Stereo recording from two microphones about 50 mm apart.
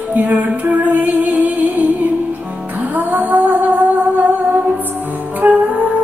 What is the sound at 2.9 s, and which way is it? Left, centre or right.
Music, right.